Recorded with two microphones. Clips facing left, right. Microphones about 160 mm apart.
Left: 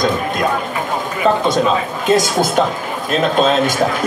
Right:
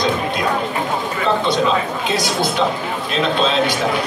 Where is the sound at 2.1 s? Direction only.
45° left (ahead or behind).